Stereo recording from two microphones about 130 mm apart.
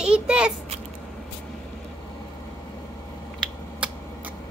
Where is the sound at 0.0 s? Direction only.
5° right (ahead or behind).